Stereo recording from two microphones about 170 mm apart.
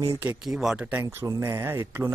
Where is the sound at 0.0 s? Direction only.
15° right (ahead or behind).